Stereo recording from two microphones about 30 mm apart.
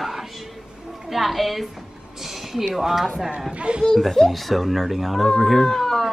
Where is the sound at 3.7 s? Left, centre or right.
Right.